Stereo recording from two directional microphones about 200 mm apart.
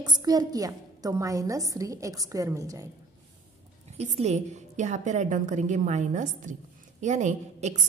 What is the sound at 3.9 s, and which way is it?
A woman's voice, 35° right (ahead or behind).